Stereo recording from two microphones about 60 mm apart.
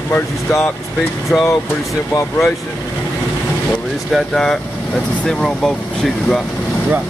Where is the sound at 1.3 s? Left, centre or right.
Centre.